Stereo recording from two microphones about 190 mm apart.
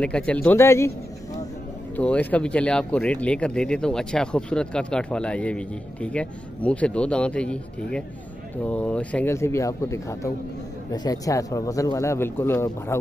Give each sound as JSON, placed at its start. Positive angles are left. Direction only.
{"t": 0.0, "sound": "speech", "side_deg": 5}
{"t": 2.0, "sound": "speech", "side_deg": 5}